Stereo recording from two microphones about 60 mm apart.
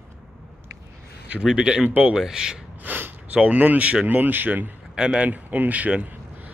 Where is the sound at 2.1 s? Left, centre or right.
Centre.